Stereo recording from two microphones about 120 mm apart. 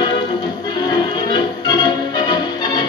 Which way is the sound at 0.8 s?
35° left (ahead or behind).